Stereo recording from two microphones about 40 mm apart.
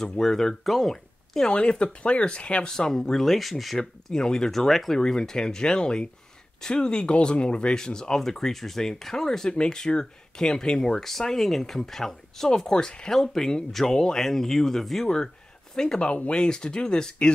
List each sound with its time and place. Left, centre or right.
0.2 s speech: centre
0.7 s speech: centre
1.5 s speech: left
2.6 s speech: centre
4.1 s speech: centre
16.4 s speech: centre